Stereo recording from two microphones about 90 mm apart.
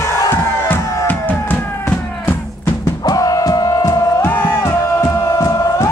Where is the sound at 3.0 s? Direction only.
40° left (ahead or behind).